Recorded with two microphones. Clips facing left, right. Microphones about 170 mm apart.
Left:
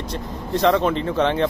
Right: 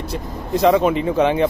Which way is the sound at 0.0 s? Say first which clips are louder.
Right 2 dB; 10° right (ahead or behind).